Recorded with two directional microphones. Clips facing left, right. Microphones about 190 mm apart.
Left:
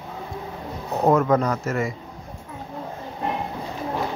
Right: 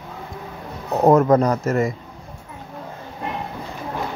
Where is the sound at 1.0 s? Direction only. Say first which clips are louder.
Right 4 dB; 40° right (ahead or behind).